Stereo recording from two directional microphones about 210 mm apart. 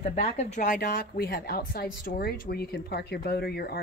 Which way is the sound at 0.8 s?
50° left (ahead or behind).